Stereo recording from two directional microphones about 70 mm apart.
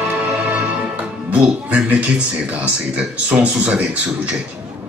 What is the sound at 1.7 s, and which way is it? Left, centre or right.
Speech, right.